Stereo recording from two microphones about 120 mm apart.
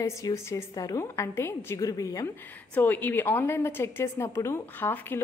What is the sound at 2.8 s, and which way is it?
A woman's voice, 15° left (ahead or behind).